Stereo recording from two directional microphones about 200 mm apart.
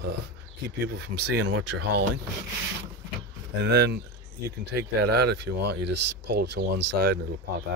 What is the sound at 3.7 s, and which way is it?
Speech, 55° right (ahead or behind).